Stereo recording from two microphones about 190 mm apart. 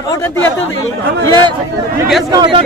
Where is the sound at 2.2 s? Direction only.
25° right (ahead or behind).